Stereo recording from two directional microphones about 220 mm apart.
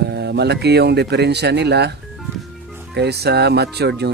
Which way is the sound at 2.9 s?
50° right (ahead or behind).